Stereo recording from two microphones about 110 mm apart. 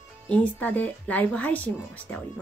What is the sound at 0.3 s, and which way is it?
Speech, 15° left (ahead or behind).